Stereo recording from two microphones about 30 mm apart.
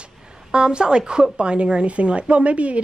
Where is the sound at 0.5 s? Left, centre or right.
Right.